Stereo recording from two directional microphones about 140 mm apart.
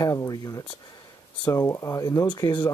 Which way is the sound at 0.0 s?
25° left (ahead or behind).